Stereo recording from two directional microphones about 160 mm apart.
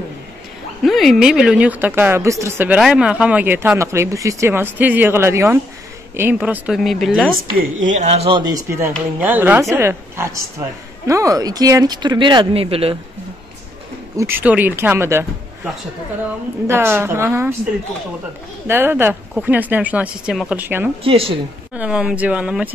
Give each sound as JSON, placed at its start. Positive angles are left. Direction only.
{"t": 0.8, "sound": "speech", "side_deg": 0}
{"t": 7.5, "sound": "speech", "side_deg": -50}
{"t": 14.1, "sound": "speech", "side_deg": -15}
{"t": 16.6, "sound": "speech", "side_deg": -15}
{"t": 18.7, "sound": "speech", "side_deg": -15}
{"t": 21.0, "sound": "speech", "side_deg": -35}
{"t": 21.7, "sound": "speech", "side_deg": -5}